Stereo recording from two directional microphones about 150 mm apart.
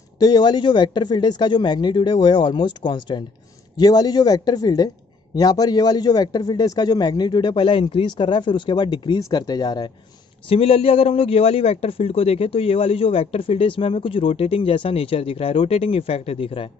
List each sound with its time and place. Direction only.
0.2 s a man's voice: 30° left (ahead or behind)
10.5 s a man's voice: 40° left (ahead or behind)